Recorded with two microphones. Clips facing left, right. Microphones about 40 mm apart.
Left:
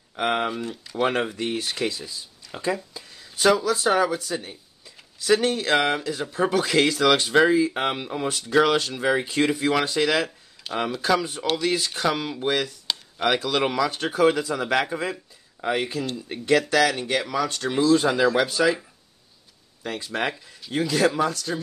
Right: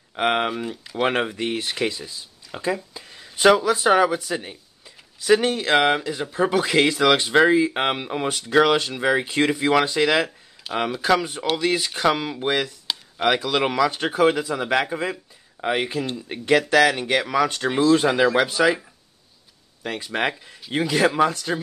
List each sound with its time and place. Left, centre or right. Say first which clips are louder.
0.1 s speech: right 3 dB; right
11.0 s speech: right 3 dB; right
12.8 s chop: right 2 dB; centre
13.8 s speech: right 1 dB; right
15.6 s speech: right 2 dB; right
19.8 s speech: right 2 dB; right